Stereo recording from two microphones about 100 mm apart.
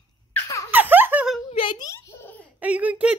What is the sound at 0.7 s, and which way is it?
Giggle, 20° right (ahead or behind).